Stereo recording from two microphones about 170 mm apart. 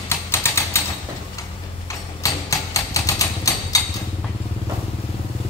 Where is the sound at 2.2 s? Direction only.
20° left (ahead or behind).